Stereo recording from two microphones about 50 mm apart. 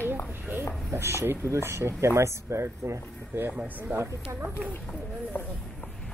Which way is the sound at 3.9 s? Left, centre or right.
Right.